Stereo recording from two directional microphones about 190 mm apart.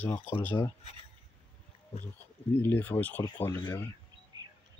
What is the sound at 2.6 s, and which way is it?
Speech, 10° left (ahead or behind).